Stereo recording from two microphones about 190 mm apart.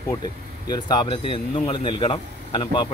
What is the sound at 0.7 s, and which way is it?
Speech, 20° left (ahead or behind).